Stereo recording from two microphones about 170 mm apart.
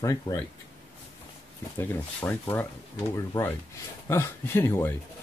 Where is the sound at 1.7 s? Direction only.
10° left (ahead or behind).